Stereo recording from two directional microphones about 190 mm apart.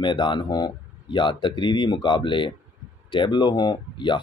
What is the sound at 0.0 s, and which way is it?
Speech, 25° left (ahead or behind).